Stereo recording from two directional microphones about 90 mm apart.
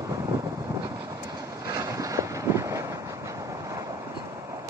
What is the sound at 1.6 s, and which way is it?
Vehicle, 40° right (ahead or behind).